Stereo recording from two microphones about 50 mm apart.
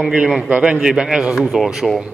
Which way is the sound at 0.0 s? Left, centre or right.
Right.